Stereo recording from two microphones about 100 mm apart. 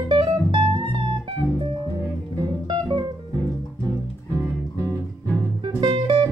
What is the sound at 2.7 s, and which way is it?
Music, 50° right (ahead or behind).